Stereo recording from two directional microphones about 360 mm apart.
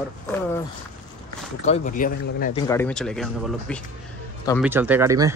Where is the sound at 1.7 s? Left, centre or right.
Left.